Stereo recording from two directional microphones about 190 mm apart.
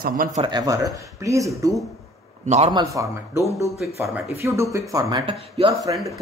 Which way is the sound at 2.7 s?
20° right (ahead or behind).